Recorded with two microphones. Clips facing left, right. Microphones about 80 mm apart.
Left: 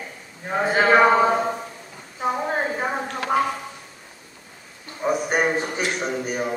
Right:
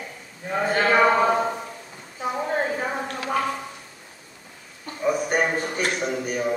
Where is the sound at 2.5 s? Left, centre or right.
Left.